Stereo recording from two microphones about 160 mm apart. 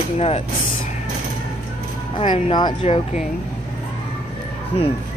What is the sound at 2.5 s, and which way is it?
Speech, 30° left (ahead or behind).